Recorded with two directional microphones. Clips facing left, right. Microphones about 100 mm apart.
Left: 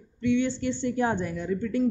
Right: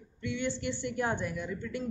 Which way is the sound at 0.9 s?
30° left (ahead or behind).